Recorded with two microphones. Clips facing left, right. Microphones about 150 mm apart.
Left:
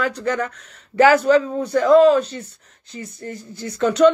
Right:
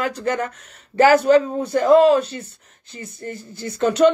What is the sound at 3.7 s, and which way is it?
Speech, 30° right (ahead or behind).